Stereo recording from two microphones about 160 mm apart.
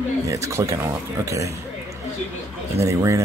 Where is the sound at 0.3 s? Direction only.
20° right (ahead or behind).